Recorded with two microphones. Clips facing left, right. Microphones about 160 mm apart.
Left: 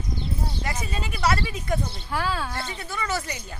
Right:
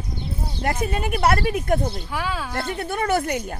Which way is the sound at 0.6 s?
55° right (ahead or behind).